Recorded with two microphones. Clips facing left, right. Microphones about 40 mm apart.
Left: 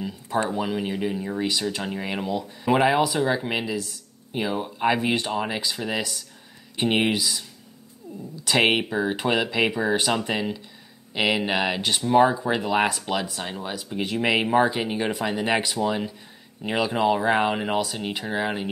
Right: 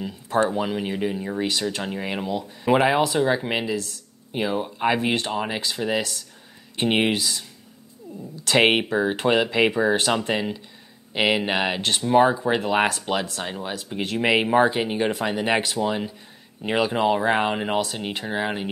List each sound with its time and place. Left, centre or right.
0.5 s speech: centre
8.5 s speech: centre